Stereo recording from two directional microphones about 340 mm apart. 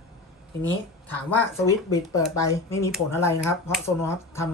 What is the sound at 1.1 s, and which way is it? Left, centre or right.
A woman's voice, centre.